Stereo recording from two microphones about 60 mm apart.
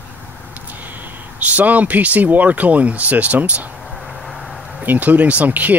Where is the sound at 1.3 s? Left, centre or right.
Right.